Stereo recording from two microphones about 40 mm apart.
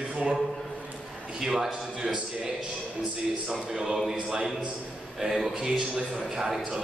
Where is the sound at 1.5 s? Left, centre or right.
Centre.